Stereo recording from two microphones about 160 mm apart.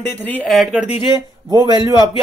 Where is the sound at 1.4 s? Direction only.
25° right (ahead or behind).